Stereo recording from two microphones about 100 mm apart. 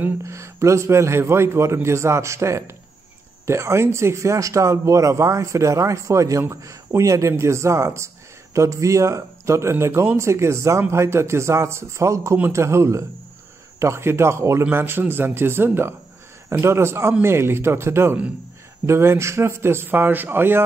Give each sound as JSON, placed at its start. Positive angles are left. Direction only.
{"t": 0.2, "sound": "speech", "side_deg": -30}